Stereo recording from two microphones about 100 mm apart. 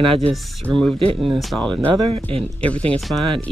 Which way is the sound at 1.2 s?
Centre (ahead or behind).